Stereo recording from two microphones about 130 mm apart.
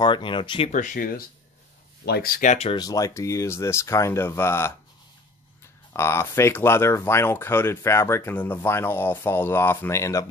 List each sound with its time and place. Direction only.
0.0 s speech: 40° left (ahead or behind)
0.7 s speech: 75° left (ahead or behind)
2.3 s speech: 65° left (ahead or behind)
2.7 s speech: 30° left (ahead or behind)
5.9 s speech: 20° left (ahead or behind)